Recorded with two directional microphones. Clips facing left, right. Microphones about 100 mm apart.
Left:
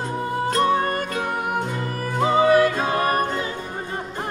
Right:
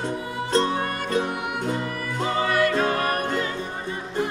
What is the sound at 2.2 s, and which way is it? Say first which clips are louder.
Music: left 6 dB; 10° left (ahead or behind).